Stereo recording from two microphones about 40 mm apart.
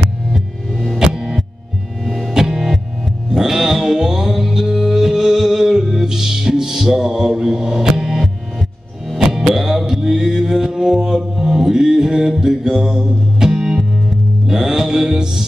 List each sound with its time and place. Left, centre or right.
0.3 s music: centre
0.9 s music: centre
2.0 s music: centre
2.3 s music: centre
9.2 s music: centre